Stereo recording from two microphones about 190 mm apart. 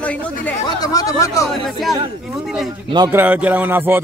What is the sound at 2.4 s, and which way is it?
Speech, centre (ahead or behind).